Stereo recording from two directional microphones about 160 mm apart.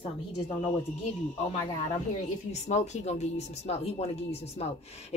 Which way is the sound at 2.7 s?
45° left (ahead or behind).